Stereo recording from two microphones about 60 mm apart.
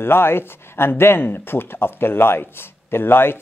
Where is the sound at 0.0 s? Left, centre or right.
Left.